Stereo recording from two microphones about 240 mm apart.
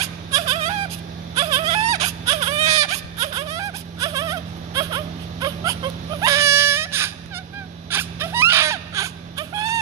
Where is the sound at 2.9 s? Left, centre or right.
Right.